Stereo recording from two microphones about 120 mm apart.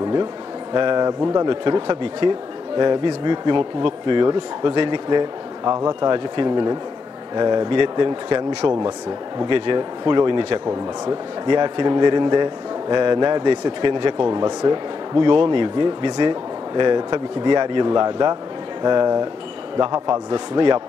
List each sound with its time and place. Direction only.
0.7 s a man's voice: 40° right (ahead or behind)
1.5 s a man's voice: 40° right (ahead or behind)